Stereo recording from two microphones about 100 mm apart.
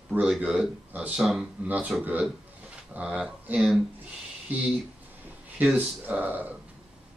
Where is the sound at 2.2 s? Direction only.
15° right (ahead or behind).